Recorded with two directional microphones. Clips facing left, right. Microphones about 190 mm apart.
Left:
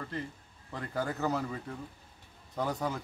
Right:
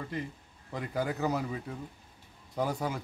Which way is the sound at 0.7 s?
15° right (ahead or behind).